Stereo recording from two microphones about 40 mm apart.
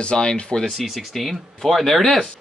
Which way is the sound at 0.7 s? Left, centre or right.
Centre.